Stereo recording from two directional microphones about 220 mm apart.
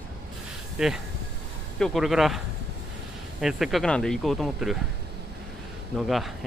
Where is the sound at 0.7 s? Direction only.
5° right (ahead or behind).